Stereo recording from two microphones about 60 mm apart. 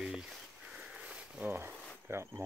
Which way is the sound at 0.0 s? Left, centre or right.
Centre.